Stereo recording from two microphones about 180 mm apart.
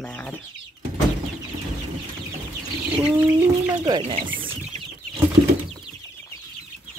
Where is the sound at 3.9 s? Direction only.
25° right (ahead or behind).